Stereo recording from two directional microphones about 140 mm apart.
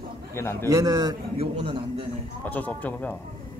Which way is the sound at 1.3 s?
45° right (ahead or behind).